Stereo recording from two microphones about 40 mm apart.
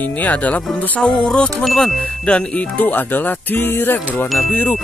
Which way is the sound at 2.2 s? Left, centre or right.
Left.